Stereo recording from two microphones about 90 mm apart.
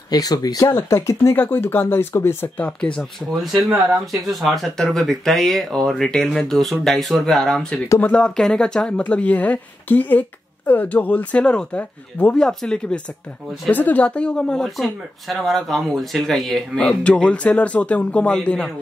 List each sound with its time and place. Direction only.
0.1 s speech: 45° left (ahead or behind)
0.7 s speech: 30° left (ahead or behind)
2.5 s speech: 15° left (ahead or behind)
3.5 s speech: 5° right (ahead or behind)